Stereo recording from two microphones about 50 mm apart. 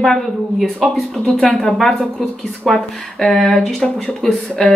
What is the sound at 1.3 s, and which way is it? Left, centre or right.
Speech, centre.